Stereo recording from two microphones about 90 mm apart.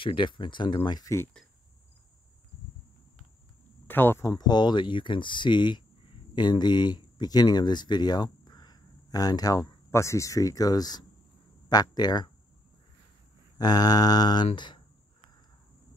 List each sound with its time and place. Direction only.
0.0 s speech: 65° left (ahead or behind)
0.9 s speech: 35° left (ahead or behind)
3.8 s speech: 20° left (ahead or behind)
4.3 s speech: 50° left (ahead or behind)
9.8 s speech: 30° left (ahead or behind); by 11.1 s 50° left (ahead or behind)
11.7 s a sound: 50° left (ahead or behind)
13.6 s a sound: 45° left (ahead or behind)